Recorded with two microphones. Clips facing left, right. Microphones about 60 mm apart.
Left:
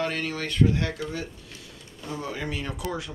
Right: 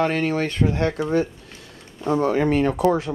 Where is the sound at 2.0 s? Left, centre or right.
Right.